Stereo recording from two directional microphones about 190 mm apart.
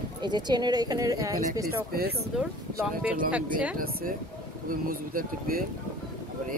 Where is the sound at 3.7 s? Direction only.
50° right (ahead or behind).